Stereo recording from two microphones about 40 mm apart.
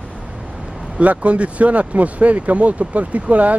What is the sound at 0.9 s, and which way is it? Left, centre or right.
Speech, right.